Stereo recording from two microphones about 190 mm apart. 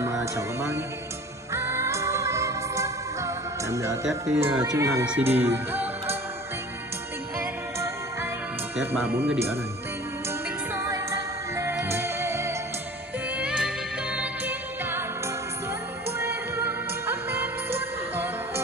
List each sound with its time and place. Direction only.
0.0 s speech: 15° right (ahead or behind)
1.5 s music: 15° right (ahead or behind)
4.3 s speech: 10° right (ahead or behind)
7.3 s music: 15° right (ahead or behind)
8.7 s speech: 5° right (ahead or behind)
10.7 s music: 15° right (ahead or behind)
16.1 s music: 10° right (ahead or behind)